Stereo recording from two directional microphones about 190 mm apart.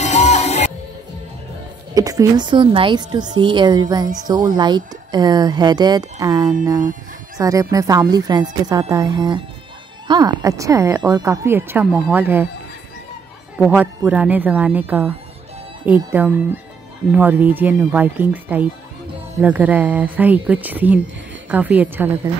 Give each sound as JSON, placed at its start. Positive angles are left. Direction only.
{"t": 0.0, "sound": "music", "side_deg": 35}
{"t": 2.0, "sound": "a woman's voice", "side_deg": -20}
{"t": 13.6, "sound": "a woman's voice", "side_deg": -10}